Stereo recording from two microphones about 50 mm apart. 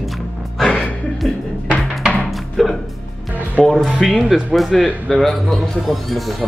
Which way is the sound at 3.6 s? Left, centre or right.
Centre.